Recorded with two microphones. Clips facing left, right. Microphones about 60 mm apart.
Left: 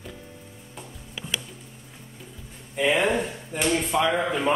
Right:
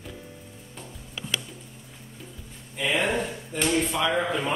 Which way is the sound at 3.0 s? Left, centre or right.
Centre.